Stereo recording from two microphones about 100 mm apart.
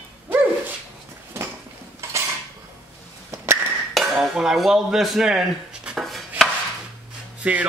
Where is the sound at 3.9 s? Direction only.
Centre (ahead or behind).